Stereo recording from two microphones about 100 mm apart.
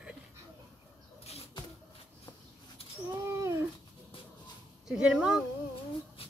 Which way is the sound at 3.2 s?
25° right (ahead or behind).